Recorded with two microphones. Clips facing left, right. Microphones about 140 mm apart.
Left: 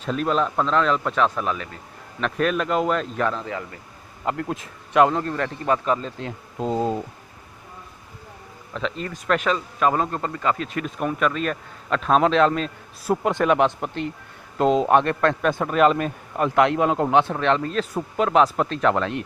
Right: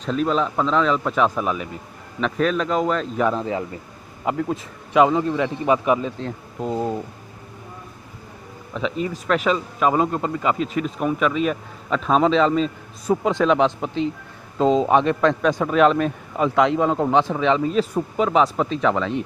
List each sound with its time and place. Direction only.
0.0 s speech: centre (ahead or behind)
3.2 s a man's voice: 10° right (ahead or behind)
3.4 s a man's voice: 25° right (ahead or behind)
4.2 s a man's voice: 5° right (ahead or behind)
6.6 s speech: 15° left (ahead or behind)
8.7 s speech: 5° right (ahead or behind)